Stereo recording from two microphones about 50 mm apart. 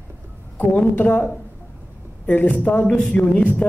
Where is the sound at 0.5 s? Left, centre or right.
Left.